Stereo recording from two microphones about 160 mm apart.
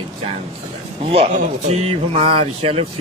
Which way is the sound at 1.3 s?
40° right (ahead or behind).